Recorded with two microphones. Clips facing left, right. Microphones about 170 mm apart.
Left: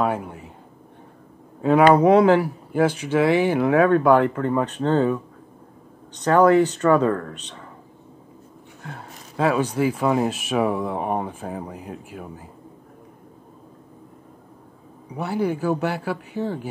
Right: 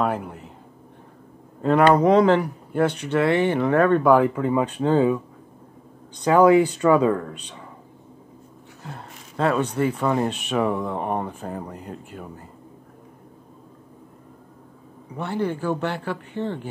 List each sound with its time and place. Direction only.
0.0 s speech: centre (ahead or behind)
1.6 s speech: 5° left (ahead or behind); by 7.6 s 15° right (ahead or behind)
8.8 s speech: 5° left (ahead or behind)
15.1 s speech: 10° left (ahead or behind)